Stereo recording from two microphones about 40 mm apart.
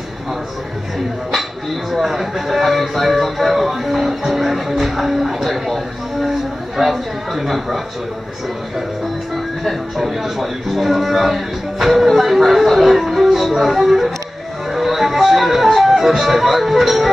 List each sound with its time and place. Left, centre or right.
1.9 s speech: centre
6.8 s speech: centre
9.3 s speech: centre